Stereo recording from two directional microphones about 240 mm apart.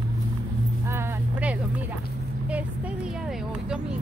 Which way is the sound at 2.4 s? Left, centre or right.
Centre.